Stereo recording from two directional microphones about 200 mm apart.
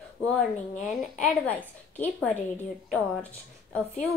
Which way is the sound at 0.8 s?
5° left (ahead or behind).